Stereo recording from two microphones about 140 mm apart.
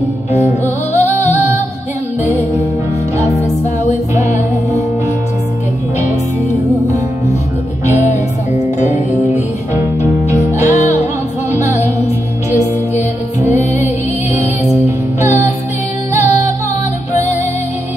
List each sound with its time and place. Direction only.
0.3 s music: 55° left (ahead or behind)
8.1 s music: 55° left (ahead or behind)
13.4 s music: 55° left (ahead or behind)
16.2 s music: 25° right (ahead or behind)